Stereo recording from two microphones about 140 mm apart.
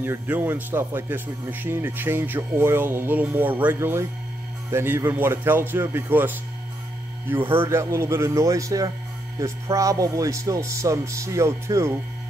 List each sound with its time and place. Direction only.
0.0 s speech: 15° right (ahead or behind)